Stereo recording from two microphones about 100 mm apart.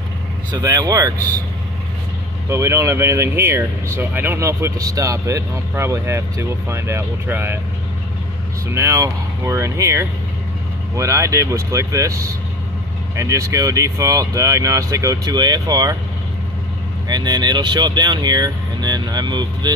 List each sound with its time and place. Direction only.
0.5 s speech: 40° right (ahead or behind)
2.5 s speech: 25° right (ahead or behind)
8.7 s speech: 30° right (ahead or behind)
17.1 s speech: 45° right (ahead or behind)